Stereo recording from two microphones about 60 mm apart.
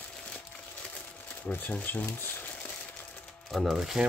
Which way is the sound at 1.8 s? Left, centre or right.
Left.